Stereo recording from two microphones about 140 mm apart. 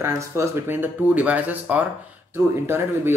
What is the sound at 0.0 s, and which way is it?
Speech, 15° right (ahead or behind).